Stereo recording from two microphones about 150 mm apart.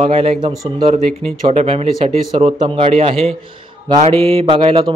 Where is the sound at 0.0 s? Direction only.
45° right (ahead or behind).